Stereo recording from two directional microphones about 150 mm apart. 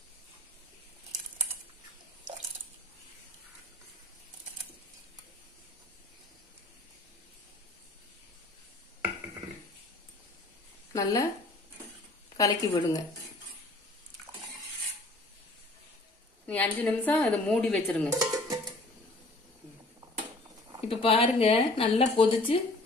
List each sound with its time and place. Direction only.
10.9 s speech: 20° left (ahead or behind)
12.4 s a woman's voice: 25° left (ahead or behind)
16.4 s speech: 10° left (ahead or behind)
18.2 s music: 25° right (ahead or behind)
20.9 s speech: 40° left (ahead or behind)